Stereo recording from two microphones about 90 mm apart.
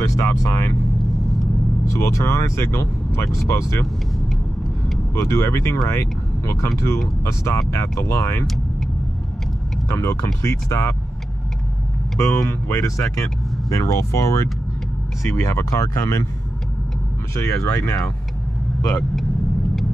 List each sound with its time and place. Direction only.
0.0 s speech: 35° left (ahead or behind)
1.9 s speech: 35° left (ahead or behind)
5.1 s speech: 30° left (ahead or behind)
9.8 s speech: 35° left (ahead or behind)
12.2 s speech: 30° left (ahead or behind)
17.4 s speech: 35° left (ahead or behind)